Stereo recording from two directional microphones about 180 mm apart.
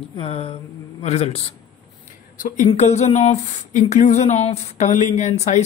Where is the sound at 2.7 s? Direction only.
40° left (ahead or behind).